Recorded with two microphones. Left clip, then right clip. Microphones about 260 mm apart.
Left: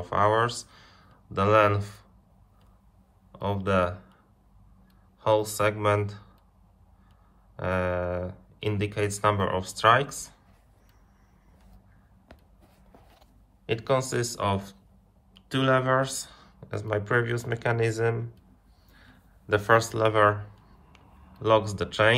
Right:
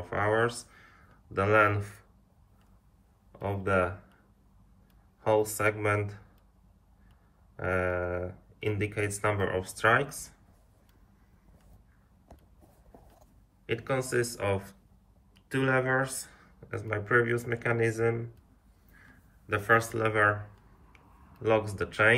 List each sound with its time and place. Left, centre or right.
0.0 s speech: centre
3.3 s speech: centre
5.2 s speech: centre
7.5 s speech: centre
10.0 s speech: right
13.7 s speech: centre
15.7 s speech: centre
19.5 s speech: centre
21.4 s speech: centre